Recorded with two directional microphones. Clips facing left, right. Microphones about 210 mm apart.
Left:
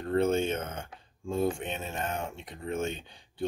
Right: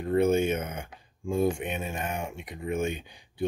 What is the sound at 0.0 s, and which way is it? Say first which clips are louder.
Speech: right 3 dB; 15° right (ahead or behind).